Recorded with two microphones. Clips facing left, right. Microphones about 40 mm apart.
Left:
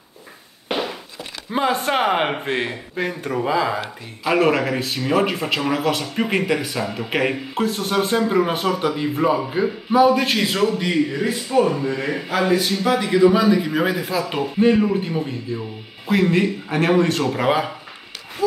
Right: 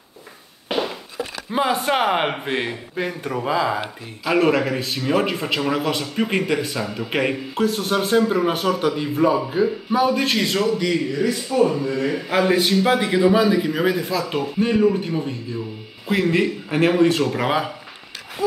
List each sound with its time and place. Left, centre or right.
1.5 s a man's voice: centre; by 11.6 s left
12.3 s a man's voice: right
13.1 s speech: centre
13.7 s a man's voice: centre
16.1 s speech: centre